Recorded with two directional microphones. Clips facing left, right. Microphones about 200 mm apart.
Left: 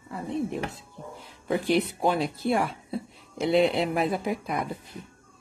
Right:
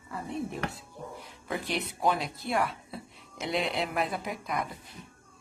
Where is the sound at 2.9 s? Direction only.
35° left (ahead or behind).